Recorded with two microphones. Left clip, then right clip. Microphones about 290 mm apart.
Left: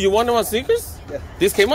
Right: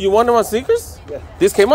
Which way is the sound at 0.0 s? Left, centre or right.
Centre.